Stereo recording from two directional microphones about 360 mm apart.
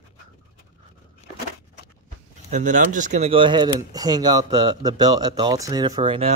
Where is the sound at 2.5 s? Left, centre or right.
Right.